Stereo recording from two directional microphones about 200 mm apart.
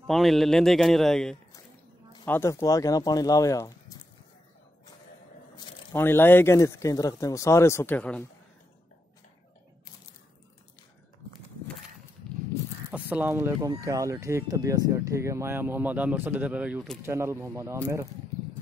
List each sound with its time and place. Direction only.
0.0 s a man's voice: centre (ahead or behind); by 4.0 s 15° left (ahead or behind)
5.6 s speech: 15° left (ahead or behind)
12.9 s speech: 10° right (ahead or behind)
17.0 s speech: 15° right (ahead or behind)